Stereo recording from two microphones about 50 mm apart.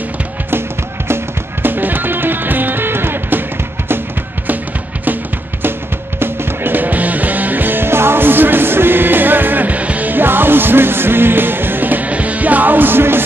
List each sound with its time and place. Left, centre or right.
1.0 s music: right
5.6 s music: right